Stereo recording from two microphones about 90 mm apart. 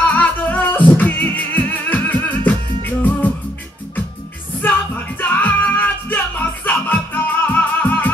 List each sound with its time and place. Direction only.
0.1 s music: 20° left (ahead or behind)
4.6 s music: 20° left (ahead or behind)